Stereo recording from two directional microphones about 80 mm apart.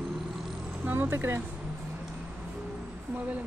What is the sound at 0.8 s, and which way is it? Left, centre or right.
Speech, right.